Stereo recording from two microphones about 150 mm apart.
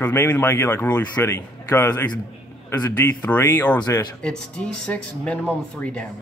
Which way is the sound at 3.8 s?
25° left (ahead or behind).